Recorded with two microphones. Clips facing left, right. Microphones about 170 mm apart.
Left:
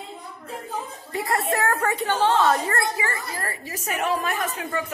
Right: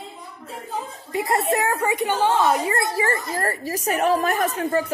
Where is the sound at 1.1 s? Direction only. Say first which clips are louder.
Right 3 dB; 20° right (ahead or behind).